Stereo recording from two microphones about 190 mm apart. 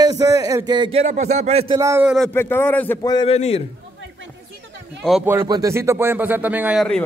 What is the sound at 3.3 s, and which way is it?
Speech, 35° left (ahead or behind).